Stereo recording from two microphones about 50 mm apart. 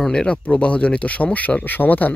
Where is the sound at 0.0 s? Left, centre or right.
Centre.